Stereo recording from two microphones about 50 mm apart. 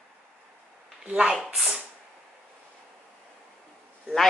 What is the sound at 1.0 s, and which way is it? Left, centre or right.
Speech, right.